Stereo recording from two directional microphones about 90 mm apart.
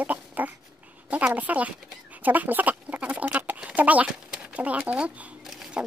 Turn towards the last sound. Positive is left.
turn(degrees=-5)  # may be behind; listen again after turning